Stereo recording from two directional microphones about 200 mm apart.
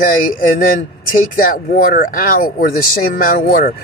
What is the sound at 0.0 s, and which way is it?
Speech, 45° left (ahead or behind).